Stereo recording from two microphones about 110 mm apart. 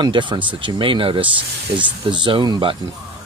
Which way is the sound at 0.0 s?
45° right (ahead or behind).